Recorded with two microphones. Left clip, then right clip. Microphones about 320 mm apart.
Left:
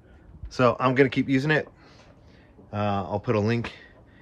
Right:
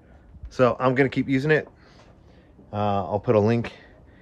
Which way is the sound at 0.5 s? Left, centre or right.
Centre.